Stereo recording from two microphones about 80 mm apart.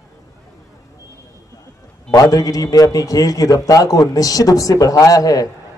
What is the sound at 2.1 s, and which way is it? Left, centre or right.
A man's voice, left.